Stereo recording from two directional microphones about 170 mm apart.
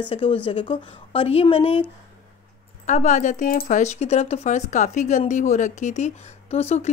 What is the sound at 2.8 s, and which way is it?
A woman's voice, 45° left (ahead or behind).